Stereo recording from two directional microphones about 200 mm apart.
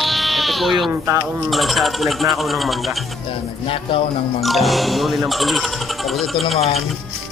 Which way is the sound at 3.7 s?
30° left (ahead or behind).